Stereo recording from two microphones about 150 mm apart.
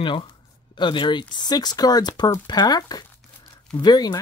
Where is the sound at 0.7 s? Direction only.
30° left (ahead or behind).